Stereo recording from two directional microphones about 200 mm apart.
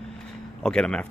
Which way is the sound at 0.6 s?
5° left (ahead or behind).